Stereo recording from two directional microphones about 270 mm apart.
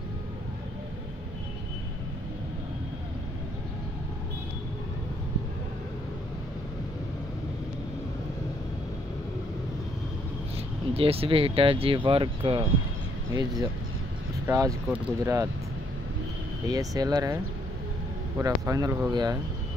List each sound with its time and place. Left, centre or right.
10.9 s speech: right
16.6 s speech: centre
18.4 s speech: centre